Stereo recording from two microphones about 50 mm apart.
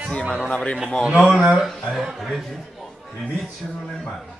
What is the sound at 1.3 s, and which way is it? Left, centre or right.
Speech, centre.